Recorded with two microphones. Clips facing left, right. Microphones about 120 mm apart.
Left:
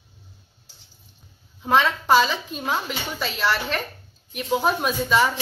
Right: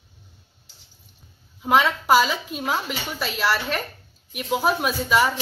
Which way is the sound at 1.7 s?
10° right (ahead or behind).